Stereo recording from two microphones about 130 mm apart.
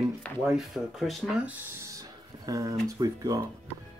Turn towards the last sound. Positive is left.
turn(degrees=-25)  # may be behind; listen again after turning